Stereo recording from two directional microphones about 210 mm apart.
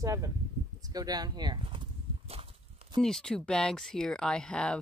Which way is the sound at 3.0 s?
Centre (ahead or behind).